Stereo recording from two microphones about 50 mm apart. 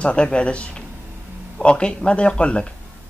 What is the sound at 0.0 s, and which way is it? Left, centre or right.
Speech, left.